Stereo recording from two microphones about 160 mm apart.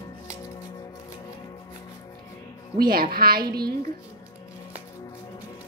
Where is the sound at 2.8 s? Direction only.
65° right (ahead or behind).